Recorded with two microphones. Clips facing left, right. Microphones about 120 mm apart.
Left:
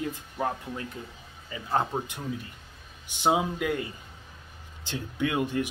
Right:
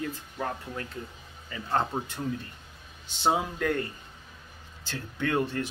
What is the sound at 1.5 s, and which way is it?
Speech, 15° left (ahead or behind).